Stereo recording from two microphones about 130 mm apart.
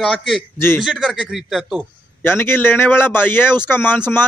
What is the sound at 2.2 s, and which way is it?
A man's voice, 15° left (ahead or behind).